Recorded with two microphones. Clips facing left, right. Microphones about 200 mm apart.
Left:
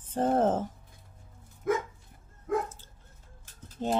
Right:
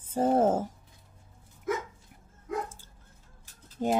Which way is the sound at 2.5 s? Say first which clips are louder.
Left 4 dB; 50° left (ahead or behind).